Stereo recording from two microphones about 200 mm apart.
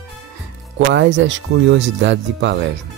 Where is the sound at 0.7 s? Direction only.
60° right (ahead or behind).